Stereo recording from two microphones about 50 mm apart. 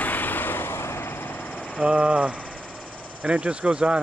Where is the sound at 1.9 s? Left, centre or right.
Right.